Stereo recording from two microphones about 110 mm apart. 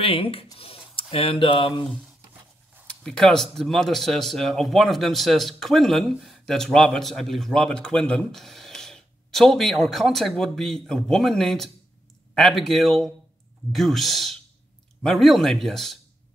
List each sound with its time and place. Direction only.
0.0 s speech: 60° left (ahead or behind)
0.6 s a sound: 60° left (ahead or behind)
1.1 s speech: 50° left (ahead or behind)
2.9 s speech: 5° left (ahead or behind)